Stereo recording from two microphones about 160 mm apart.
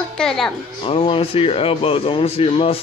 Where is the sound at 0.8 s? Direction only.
35° left (ahead or behind).